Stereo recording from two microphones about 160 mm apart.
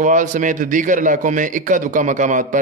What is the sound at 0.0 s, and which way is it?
A man's voice, 50° right (ahead or behind).